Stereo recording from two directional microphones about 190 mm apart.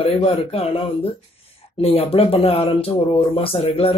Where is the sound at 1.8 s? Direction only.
30° left (ahead or behind).